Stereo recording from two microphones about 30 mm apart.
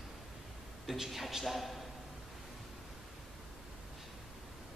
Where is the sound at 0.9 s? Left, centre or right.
Centre.